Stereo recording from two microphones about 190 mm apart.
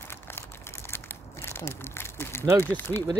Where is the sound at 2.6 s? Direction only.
10° left (ahead or behind).